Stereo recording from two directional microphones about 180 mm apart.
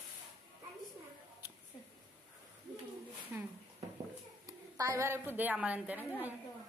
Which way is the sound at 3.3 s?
10° right (ahead or behind).